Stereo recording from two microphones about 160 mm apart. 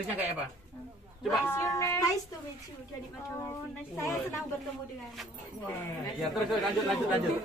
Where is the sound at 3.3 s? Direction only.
15° left (ahead or behind).